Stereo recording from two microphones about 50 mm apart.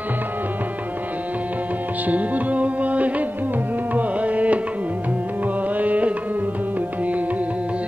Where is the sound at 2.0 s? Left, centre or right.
Right.